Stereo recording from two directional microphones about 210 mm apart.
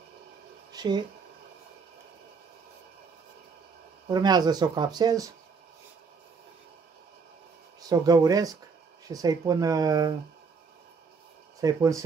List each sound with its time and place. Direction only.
0.7 s a sound: 20° right (ahead or behind)
4.1 s speech: 20° right (ahead or behind)
7.9 s speech: 15° right (ahead or behind)
11.6 s speech: 15° right (ahead or behind)